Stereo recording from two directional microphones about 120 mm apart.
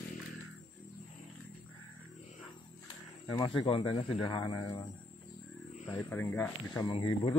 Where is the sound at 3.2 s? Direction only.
35° left (ahead or behind).